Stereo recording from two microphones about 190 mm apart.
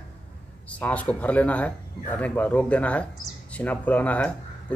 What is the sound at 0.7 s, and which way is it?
Speech, 5° left (ahead or behind).